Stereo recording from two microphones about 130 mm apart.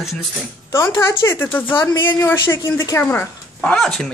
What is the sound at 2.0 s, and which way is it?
Speech, 20° left (ahead or behind).